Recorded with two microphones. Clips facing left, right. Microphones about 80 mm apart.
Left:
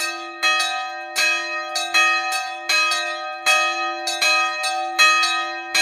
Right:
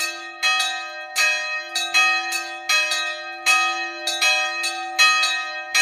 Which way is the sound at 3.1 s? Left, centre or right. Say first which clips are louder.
Left 4 dB; left.